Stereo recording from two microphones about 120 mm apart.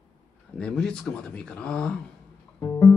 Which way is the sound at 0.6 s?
5° left (ahead or behind).